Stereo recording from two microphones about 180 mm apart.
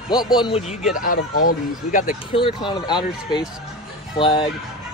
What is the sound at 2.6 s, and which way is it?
Speech, 25° left (ahead or behind).